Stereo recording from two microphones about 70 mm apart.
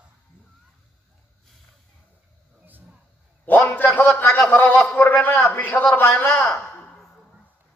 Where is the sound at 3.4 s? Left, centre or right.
Left.